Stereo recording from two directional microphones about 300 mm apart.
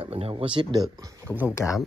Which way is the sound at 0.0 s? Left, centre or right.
Centre.